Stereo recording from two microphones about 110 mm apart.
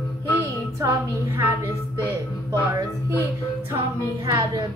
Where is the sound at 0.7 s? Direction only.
25° right (ahead or behind).